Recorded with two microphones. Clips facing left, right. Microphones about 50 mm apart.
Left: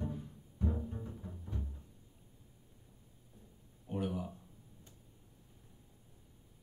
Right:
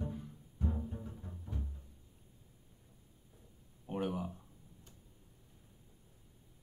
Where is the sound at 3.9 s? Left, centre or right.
Right.